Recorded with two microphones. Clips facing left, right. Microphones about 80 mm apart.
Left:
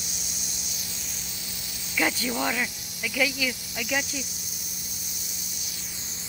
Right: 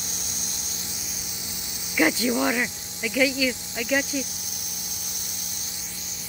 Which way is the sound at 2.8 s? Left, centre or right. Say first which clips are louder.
Right 6 dB; right.